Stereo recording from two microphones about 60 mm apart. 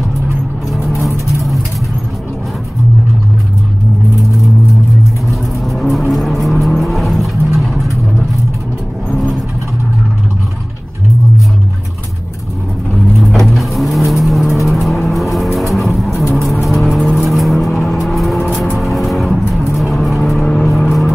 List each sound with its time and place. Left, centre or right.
0.9 s vehicle: left
5.3 s vehicle: centre
13.2 s vehicle: centre